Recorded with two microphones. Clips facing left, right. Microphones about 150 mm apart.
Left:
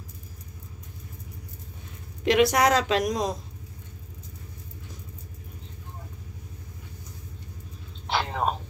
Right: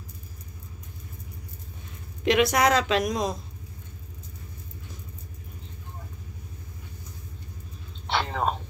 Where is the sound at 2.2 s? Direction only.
35° left (ahead or behind).